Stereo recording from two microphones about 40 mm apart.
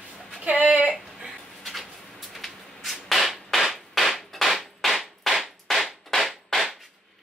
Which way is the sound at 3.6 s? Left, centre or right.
Centre.